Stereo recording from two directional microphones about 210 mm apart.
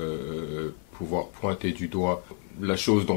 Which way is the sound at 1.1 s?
15° left (ahead or behind).